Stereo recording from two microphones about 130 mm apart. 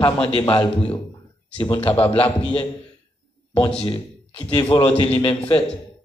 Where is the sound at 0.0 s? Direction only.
35° left (ahead or behind).